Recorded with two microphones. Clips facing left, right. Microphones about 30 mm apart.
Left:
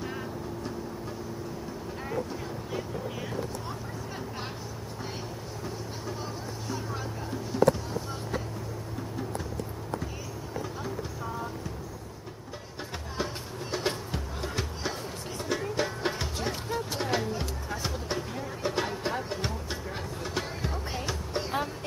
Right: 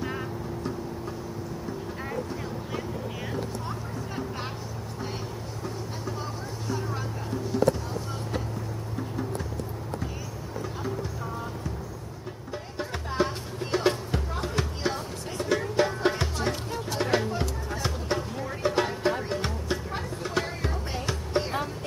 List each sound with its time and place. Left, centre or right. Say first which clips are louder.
0.0 s vehicle: right 3 dB; centre
13.2 s music: right 6 dB; centre
14.4 s music: right 3 dB; centre
16.3 s music: right 2 dB; centre
17.4 s a sound: right 3 dB; centre
18.4 s music: right 5 dB; centre
21.3 s music: right 7 dB; centre